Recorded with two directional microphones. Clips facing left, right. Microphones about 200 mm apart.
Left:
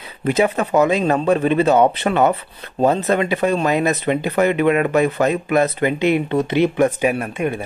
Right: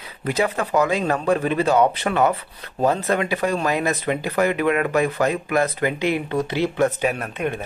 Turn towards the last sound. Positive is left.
turn(degrees=10)  # may be behind; listen again after turning